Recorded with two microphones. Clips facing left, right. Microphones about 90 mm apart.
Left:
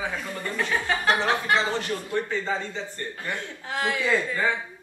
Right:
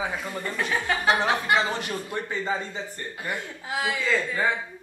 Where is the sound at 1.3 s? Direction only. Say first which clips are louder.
Even; 15° right (ahead or behind).